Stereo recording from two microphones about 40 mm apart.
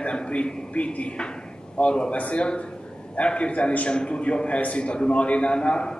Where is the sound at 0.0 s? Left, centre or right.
Left.